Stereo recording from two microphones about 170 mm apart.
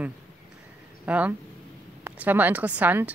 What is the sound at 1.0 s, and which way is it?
A woman's voice, 10° right (ahead or behind).